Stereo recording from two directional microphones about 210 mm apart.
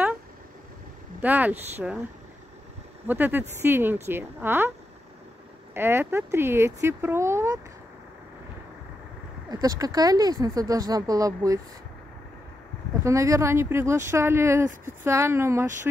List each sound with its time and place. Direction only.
1.2 s speech: 10° right (ahead or behind)
3.1 s speech: 10° right (ahead or behind)
5.8 s speech: 10° right (ahead or behind)
9.5 s speech: 20° right (ahead or behind)
13.0 s speech: 15° right (ahead or behind)